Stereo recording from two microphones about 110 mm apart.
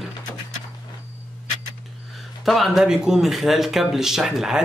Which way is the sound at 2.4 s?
Centre (ahead or behind).